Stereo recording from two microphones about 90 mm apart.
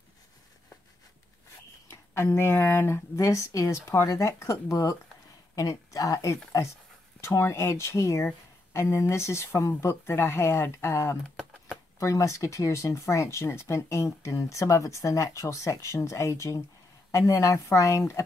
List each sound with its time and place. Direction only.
1.9 s speech: 30° left (ahead or behind)
3.2 s speech: 35° left (ahead or behind)